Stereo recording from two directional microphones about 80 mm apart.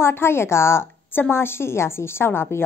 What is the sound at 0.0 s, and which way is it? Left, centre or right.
A woman's voice, left.